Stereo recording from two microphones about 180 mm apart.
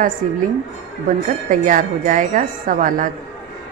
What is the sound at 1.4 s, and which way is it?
A woman's voice, 45° right (ahead or behind).